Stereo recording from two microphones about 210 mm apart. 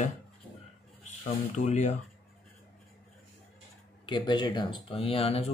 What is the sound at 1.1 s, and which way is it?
Speech, 35° left (ahead or behind).